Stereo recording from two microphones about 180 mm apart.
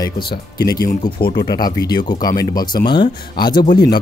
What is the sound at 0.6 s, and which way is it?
Speech, 20° left (ahead or behind).